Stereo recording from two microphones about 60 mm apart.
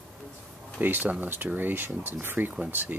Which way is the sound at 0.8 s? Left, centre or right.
Right.